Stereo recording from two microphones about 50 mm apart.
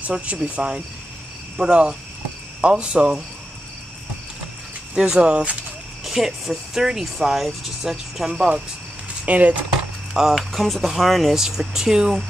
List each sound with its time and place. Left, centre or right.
0.3 s speech: right
1.6 s speech: centre
4.9 s speech: centre
6.0 s speech: centre
9.2 s speech: right
10.1 s speech: centre